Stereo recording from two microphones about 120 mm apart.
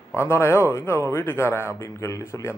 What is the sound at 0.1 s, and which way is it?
A man's voice, 25° left (ahead or behind).